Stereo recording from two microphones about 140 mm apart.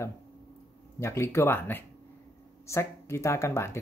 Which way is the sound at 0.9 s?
20° left (ahead or behind).